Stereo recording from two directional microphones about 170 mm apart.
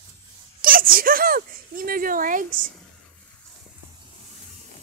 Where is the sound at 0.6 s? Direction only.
55° right (ahead or behind).